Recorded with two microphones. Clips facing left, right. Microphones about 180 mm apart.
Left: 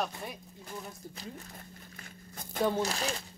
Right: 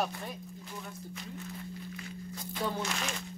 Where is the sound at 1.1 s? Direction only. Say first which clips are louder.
Right 3 dB; 40° left (ahead or behind).